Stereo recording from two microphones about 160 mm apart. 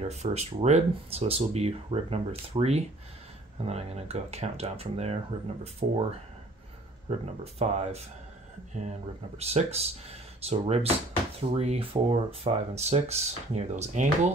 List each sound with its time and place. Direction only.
0.1 s speech: 45° right (ahead or behind)
7.1 s speech: 40° right (ahead or behind)
9.4 s speech: 40° right (ahead or behind)